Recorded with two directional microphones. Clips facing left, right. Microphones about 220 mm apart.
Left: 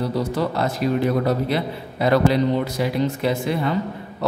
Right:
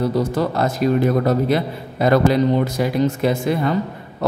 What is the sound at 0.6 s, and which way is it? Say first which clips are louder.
Speech: right 5 dB; 45° right (ahead or behind).